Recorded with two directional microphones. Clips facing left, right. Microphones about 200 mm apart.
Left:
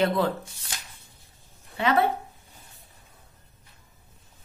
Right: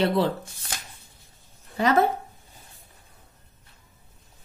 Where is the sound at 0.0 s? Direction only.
30° right (ahead or behind).